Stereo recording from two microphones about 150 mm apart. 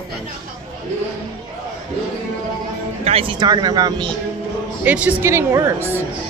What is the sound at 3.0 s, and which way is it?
Speech, 40° right (ahead or behind).